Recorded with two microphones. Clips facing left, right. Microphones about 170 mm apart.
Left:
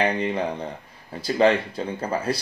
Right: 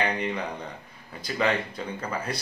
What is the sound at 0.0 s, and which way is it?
Speech, 30° left (ahead or behind).